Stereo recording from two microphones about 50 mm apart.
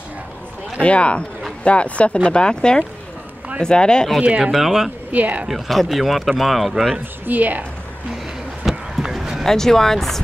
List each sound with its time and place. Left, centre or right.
0.8 s speech: left
4.5 s speech: centre
5.1 s a woman's voice: right
5.5 s speech: centre
7.2 s a woman's voice: right
8.6 s a sound: centre
9.4 s speech: centre